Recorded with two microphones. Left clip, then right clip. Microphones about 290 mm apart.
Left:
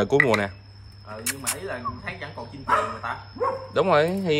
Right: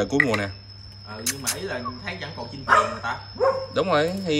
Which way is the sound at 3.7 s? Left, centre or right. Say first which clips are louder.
Left 2 dB; left.